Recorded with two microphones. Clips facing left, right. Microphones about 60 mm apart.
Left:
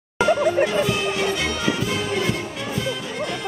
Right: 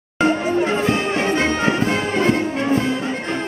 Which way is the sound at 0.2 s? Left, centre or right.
Right.